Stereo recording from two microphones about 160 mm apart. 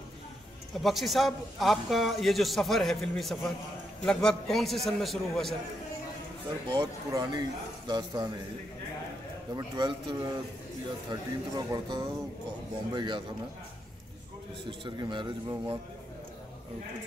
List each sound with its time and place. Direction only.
0.8 s a man's voice: centre (ahead or behind)
6.7 s speech: 25° right (ahead or behind)
9.6 s speech: 30° right (ahead or behind)
14.7 s speech: 30° right (ahead or behind)